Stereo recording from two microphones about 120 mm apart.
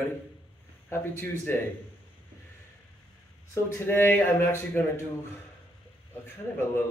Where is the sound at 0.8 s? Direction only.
20° left (ahead or behind).